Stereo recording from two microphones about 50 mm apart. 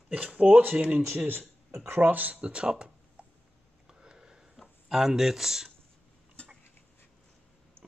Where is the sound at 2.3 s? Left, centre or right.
Right.